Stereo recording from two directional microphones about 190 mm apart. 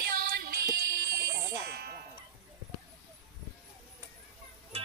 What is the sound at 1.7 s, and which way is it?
Music, 55° right (ahead or behind).